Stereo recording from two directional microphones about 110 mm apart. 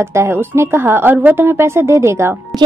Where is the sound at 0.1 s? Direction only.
25° right (ahead or behind).